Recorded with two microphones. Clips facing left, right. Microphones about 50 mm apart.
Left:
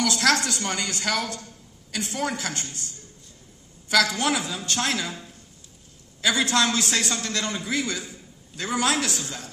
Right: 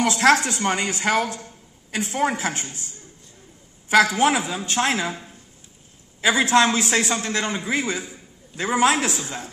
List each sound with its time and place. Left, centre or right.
0.0 s a man's voice: right
3.9 s a man's voice: right